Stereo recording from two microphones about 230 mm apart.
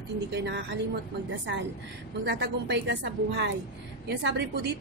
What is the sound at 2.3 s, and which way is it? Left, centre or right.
Speech, right.